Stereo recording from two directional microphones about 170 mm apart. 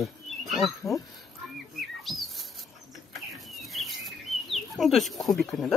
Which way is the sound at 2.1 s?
Centre (ahead or behind).